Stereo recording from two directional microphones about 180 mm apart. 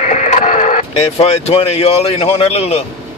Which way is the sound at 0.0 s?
40° left (ahead or behind).